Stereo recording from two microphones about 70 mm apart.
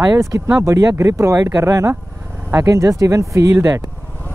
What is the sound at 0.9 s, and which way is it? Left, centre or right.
Speech, right.